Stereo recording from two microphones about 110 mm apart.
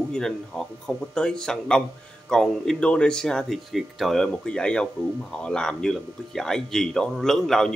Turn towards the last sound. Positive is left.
turn(degrees=5)  # may be behind; listen again after turning